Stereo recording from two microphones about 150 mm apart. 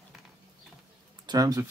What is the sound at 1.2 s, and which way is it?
Speech, 25° right (ahead or behind).